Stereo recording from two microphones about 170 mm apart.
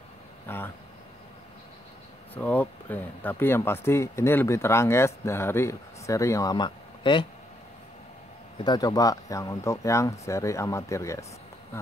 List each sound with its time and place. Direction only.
0.5 s speech: 10° left (ahead or behind)
2.3 s speech: 10° left (ahead or behind); by 7.2 s 30° left (ahead or behind)
8.5 s speech: 25° left (ahead or behind)